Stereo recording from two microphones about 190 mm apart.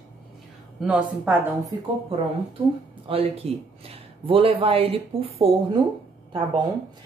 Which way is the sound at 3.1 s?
30° right (ahead or behind).